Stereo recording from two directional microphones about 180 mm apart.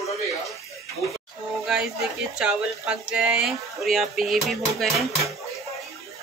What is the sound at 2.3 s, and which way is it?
Speech, 5° right (ahead or behind).